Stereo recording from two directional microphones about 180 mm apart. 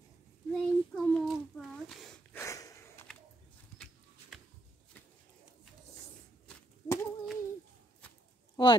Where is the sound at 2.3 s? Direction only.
15° left (ahead or behind).